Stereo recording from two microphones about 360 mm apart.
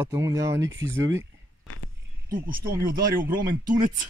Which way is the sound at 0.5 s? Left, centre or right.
Right.